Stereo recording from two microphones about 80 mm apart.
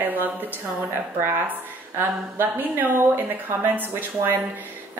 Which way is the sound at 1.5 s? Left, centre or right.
Right.